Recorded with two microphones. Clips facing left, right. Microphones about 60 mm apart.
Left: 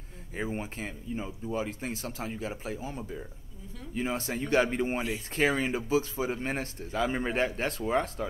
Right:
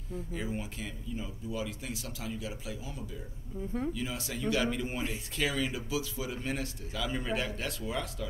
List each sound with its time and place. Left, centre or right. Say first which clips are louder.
0.3 s speech: left 5 dB; left